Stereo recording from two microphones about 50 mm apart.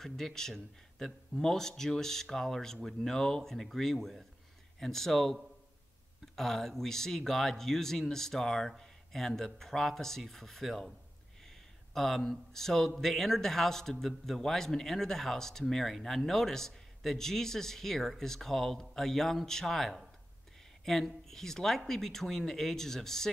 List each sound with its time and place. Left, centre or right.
0.0 s speech: centre
11.9 s speech: centre